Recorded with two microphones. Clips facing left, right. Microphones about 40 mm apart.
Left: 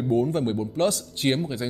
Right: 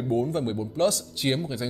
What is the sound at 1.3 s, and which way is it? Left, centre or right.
Speech, centre.